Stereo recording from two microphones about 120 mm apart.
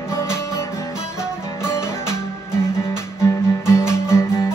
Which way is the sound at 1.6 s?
20° left (ahead or behind).